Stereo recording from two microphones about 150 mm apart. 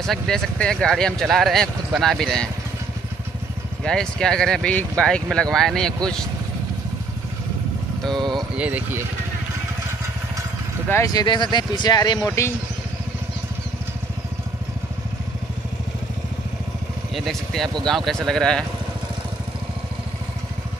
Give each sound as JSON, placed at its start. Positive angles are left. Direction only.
{"t": 0.0, "sound": "speech", "side_deg": 5}
{"t": 3.8, "sound": "speech", "side_deg": 5}
{"t": 8.2, "sound": "speech", "side_deg": -30}
{"t": 8.5, "sound": "speech", "side_deg": -10}
{"t": 10.9, "sound": "speech", "side_deg": 20}
{"t": 17.1, "sound": "speech", "side_deg": 0}